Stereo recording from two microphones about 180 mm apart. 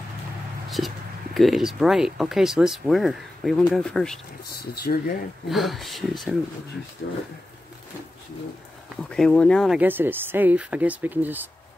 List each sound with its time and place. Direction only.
0.7 s speech: centre (ahead or behind)
4.9 s speech: 45° left (ahead or behind)
5.5 s speech: centre (ahead or behind)
9.1 s speech: 5° left (ahead or behind)
9.8 s speech: 10° right (ahead or behind)